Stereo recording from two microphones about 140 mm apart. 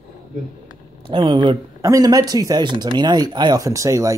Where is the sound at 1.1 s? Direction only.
35° right (ahead or behind).